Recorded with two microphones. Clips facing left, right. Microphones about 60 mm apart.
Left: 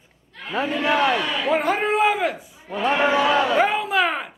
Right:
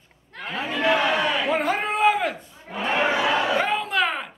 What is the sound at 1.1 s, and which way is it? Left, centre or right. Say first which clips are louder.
Speech: right 1 dB; right.